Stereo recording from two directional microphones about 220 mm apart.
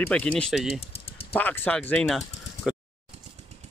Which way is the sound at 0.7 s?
25° left (ahead or behind).